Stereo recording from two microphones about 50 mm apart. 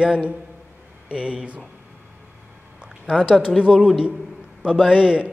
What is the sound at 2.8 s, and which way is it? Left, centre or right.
A man's voice, centre.